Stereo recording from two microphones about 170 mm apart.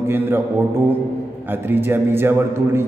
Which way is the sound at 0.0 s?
15° right (ahead or behind).